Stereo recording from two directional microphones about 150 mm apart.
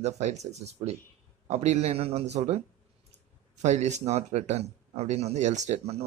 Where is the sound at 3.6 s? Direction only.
50° right (ahead or behind).